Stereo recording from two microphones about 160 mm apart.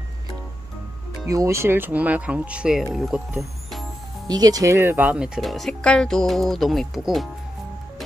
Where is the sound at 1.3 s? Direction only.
20° right (ahead or behind); by 3.2 s centre (ahead or behind).